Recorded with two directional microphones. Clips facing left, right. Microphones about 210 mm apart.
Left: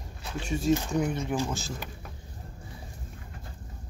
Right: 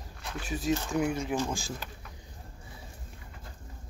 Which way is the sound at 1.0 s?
10° right (ahead or behind).